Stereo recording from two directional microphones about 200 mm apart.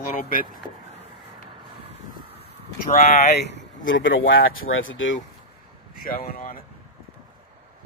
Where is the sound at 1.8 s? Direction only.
30° right (ahead or behind).